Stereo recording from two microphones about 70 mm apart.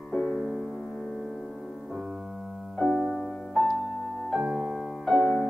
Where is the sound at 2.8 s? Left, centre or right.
Centre.